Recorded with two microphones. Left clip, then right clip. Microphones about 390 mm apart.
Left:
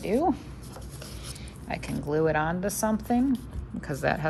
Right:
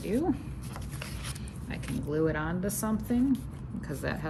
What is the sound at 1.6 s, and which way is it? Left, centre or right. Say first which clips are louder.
Speech: left 5 dB; centre.